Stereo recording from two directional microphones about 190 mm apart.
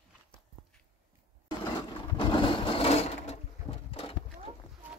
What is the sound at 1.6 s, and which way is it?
Sewing machine, 25° left (ahead or behind).